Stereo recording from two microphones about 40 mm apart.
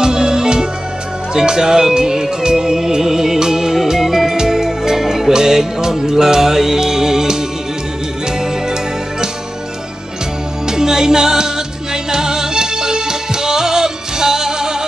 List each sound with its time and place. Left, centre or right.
0.0 s music: centre
1.3 s speech: centre
3.8 s music: centre
10.7 s music: centre